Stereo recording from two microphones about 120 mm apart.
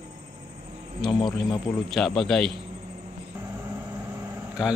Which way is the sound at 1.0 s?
Centre (ahead or behind).